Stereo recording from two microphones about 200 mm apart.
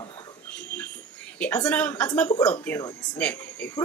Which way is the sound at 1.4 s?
5° left (ahead or behind).